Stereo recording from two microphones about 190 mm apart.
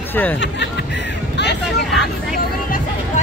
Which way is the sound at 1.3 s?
65° left (ahead or behind).